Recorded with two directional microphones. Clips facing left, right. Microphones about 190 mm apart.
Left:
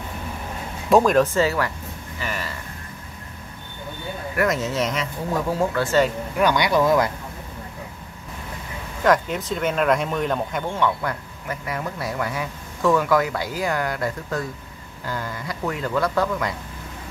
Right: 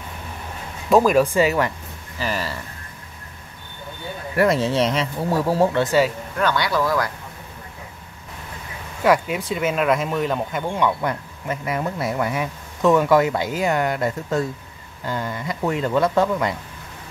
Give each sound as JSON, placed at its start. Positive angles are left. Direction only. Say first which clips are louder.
{"t": 0.8, "sound": "speech", "louder": "right 1 dB", "side_deg": 0}
{"t": 2.1, "sound": "speech", "louder": "right 5 dB", "side_deg": -35}
{"t": 4.4, "sound": "speech", "louder": "right 4 dB", "side_deg": -30}
{"t": 5.9, "sound": "speech", "louder": "right 1 dB", "side_deg": -10}
{"t": 6.3, "sound": "speech", "louder": "left 3 dB", "side_deg": 15}
{"t": 9.0, "sound": "speech", "louder": "right 1 dB", "side_deg": -10}
{"t": 10.7, "sound": "speech", "louder": "right 3 dB", "side_deg": -15}